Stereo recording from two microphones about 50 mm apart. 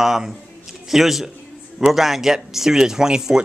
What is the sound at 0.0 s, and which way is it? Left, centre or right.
A man's voice, centre.